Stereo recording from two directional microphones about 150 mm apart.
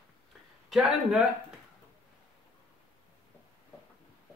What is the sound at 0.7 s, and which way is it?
Speech, 5° right (ahead or behind).